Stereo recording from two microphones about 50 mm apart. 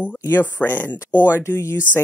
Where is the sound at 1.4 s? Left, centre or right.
Left.